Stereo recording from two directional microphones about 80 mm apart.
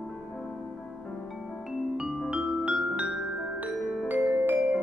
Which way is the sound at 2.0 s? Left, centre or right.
Centre.